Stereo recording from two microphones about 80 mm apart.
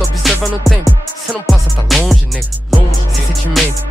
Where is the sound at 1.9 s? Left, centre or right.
Centre.